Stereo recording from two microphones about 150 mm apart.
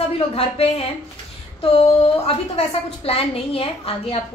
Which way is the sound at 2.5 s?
40° left (ahead or behind).